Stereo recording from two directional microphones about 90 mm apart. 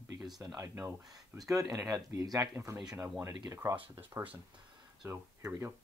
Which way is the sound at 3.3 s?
45° right (ahead or behind).